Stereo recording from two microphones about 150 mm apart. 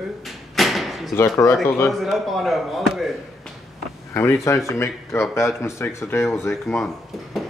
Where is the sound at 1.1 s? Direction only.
20° left (ahead or behind).